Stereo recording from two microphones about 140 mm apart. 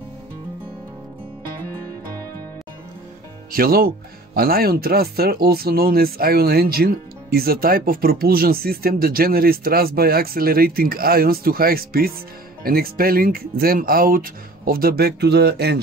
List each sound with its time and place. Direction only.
3.5 s speech: 90° right